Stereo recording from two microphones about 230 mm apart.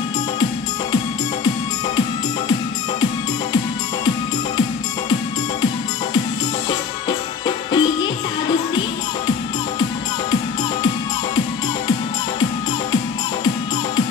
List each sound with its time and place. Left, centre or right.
6.7 s music: centre